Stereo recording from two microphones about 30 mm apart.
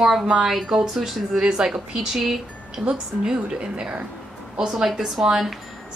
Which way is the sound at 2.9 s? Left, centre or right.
Right.